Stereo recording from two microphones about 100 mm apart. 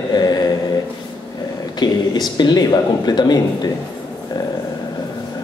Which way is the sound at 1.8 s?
45° left (ahead or behind).